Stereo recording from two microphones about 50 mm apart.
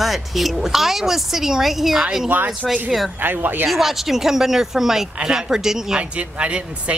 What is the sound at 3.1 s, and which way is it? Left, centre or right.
Speech, right.